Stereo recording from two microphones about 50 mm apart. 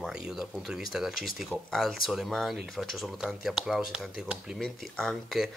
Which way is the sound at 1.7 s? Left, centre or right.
Centre.